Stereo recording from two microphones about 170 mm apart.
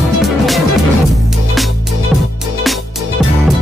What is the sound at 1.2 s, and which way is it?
Music, centre (ahead or behind).